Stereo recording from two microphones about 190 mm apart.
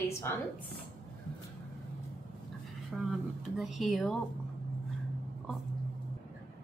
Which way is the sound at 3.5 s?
Centre (ahead or behind).